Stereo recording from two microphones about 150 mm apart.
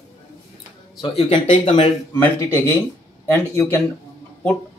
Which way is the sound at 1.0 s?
35° left (ahead or behind).